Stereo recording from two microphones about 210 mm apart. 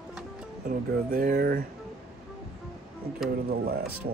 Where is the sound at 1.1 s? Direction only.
45° right (ahead or behind).